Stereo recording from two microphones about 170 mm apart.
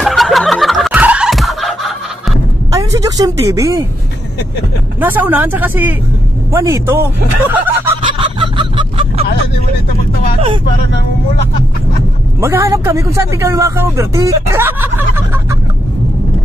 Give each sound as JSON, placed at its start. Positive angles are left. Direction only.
{"t": 0.0, "sound": "chicken", "side_deg": 0}
{"t": 2.7, "sound": "a sound", "side_deg": -20}
{"t": 5.0, "sound": "speech", "side_deg": -10}
{"t": 7.5, "sound": "snicker", "side_deg": -15}
{"t": 8.4, "sound": "a sound", "side_deg": -30}
{"t": 12.4, "sound": "speech", "side_deg": -15}